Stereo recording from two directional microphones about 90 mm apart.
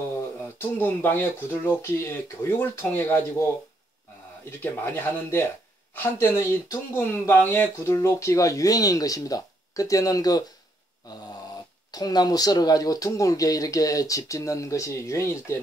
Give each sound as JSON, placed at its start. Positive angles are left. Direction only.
{"t": 0.6, "sound": "speech", "side_deg": 25}
{"t": 4.5, "sound": "speech", "side_deg": 25}
{"t": 11.9, "sound": "speech", "side_deg": 45}